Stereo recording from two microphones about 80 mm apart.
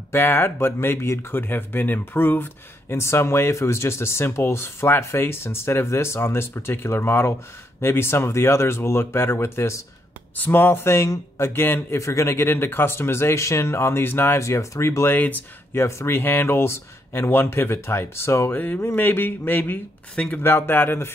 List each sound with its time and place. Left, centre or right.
0.1 s speech: left
10.3 s speech: left
15.1 s speech: left
15.7 s speech: left